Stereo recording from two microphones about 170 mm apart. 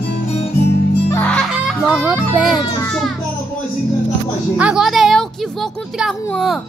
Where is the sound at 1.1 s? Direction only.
10° left (ahead or behind).